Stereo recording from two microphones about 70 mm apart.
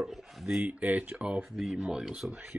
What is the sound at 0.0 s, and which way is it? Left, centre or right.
Speech, centre.